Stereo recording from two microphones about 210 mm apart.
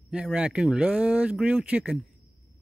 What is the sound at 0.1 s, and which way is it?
Speech, 5° right (ahead or behind).